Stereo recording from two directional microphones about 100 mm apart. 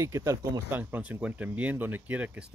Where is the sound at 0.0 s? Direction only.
30° right (ahead or behind).